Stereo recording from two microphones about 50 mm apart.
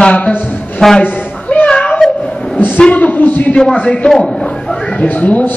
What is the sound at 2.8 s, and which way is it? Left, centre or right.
Speech, left.